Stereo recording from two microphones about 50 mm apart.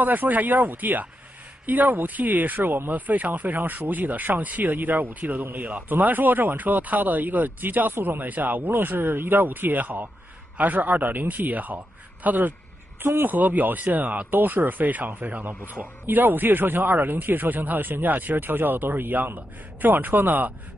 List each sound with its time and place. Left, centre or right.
0.0 s speech: right
13.0 s speech: right